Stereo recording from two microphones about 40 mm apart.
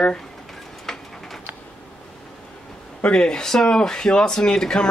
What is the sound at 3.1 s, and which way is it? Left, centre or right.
A man's voice, left.